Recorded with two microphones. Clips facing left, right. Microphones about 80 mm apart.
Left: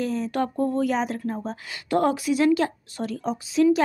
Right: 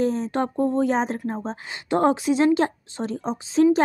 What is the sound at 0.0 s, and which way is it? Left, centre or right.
Speech, right.